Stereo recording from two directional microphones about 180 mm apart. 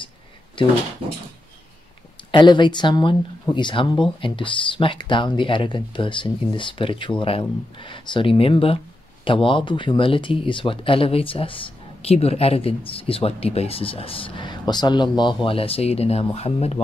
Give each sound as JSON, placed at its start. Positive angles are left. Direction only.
{"t": 2.3, "sound": "speech", "side_deg": 25}